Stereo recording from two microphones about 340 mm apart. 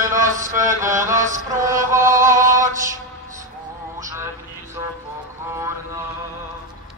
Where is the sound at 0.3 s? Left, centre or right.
Right.